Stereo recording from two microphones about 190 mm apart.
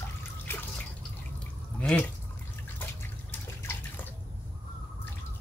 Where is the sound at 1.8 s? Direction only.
5° left (ahead or behind).